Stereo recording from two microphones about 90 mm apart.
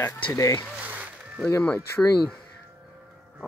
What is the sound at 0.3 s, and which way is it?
Speech, 35° left (ahead or behind).